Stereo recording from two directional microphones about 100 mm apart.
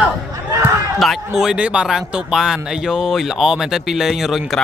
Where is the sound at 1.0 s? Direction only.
Centre (ahead or behind).